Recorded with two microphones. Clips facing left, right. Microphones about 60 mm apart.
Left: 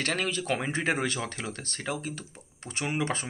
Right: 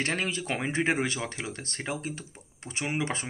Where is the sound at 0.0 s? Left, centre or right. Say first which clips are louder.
Even; right.